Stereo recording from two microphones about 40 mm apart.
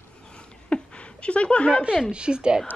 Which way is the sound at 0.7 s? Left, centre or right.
Left.